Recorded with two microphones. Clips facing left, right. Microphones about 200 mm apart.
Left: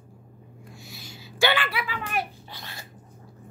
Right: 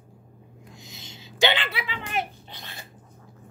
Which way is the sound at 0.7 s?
20° right (ahead or behind).